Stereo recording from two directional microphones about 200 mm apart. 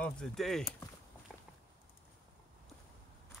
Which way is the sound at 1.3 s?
Centre (ahead or behind).